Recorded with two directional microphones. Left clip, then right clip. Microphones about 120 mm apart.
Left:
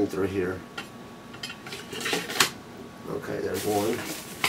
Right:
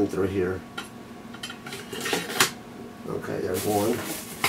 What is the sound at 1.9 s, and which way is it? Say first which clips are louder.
Dishes: right 1 dB; 5° left (ahead or behind).